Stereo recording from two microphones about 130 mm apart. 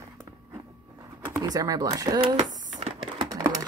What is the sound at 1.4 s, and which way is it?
Speech, 30° right (ahead or behind).